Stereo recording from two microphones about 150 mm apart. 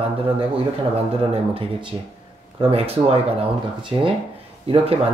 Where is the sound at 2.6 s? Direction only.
40° right (ahead or behind).